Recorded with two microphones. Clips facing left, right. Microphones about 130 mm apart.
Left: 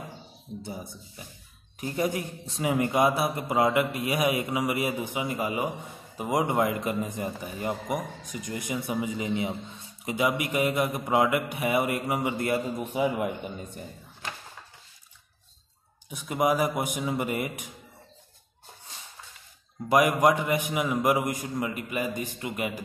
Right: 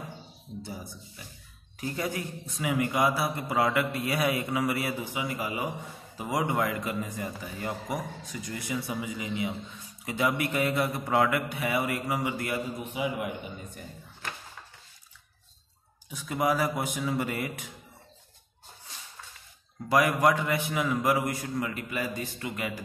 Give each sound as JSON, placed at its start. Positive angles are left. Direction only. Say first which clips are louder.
{"t": 0.6, "sound": "a man's voice", "louder": "left 1 dB", "side_deg": 20}
{"t": 10.1, "sound": "a man's voice", "louder": "left 1 dB", "side_deg": 15}
{"t": 12.9, "sound": "a man's voice", "louder": "left 5 dB", "side_deg": 40}
{"t": 16.1, "sound": "a man's voice", "louder": "left 2 dB", "side_deg": 20}
{"t": 19.9, "sound": "a man's voice", "louder": "left 2 dB", "side_deg": 20}